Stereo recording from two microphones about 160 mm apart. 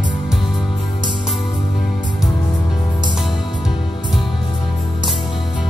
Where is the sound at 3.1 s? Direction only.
Centre (ahead or behind).